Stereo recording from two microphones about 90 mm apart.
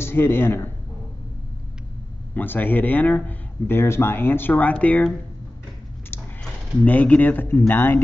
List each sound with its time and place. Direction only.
0.0 s speech: 25° left (ahead or behind)
2.3 s speech: 20° left (ahead or behind)
6.8 s speech: 15° left (ahead or behind)